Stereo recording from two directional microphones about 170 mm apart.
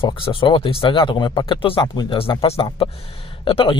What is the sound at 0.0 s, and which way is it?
A man's voice, 30° left (ahead or behind).